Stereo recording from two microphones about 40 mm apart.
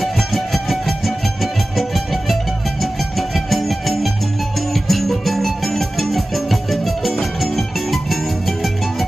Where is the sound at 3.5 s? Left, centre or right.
Centre.